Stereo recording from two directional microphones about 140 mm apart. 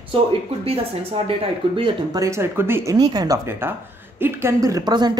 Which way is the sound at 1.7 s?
35° right (ahead or behind).